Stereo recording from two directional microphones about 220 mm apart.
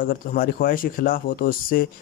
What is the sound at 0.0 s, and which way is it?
A man's voice, 40° left (ahead or behind).